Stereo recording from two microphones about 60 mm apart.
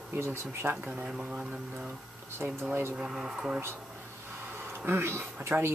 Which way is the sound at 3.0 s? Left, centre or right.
Centre.